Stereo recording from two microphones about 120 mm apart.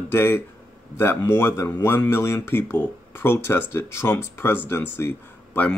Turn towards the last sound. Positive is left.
turn(degrees=20)  # may be behind; listen again after turning